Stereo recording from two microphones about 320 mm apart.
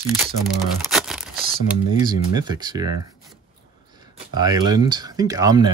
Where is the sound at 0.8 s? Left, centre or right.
Centre.